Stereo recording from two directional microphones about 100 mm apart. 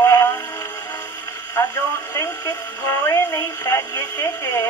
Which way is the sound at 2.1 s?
30° left (ahead or behind).